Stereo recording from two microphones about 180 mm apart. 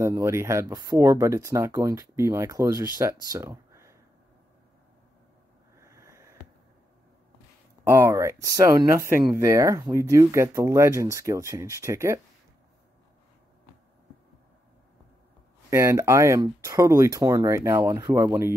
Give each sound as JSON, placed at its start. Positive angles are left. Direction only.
{"t": 0.0, "sound": "speech", "side_deg": -15}
{"t": 5.8, "sound": "a sound", "side_deg": -15}
{"t": 7.9, "sound": "speech", "side_deg": -15}
{"t": 15.7, "sound": "speech", "side_deg": -15}